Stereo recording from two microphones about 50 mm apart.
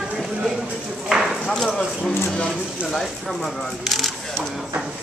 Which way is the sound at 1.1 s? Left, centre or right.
Centre.